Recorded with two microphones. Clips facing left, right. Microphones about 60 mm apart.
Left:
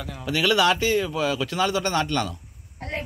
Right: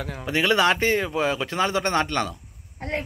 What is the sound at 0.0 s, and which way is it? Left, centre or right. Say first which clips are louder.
Speech: even; right.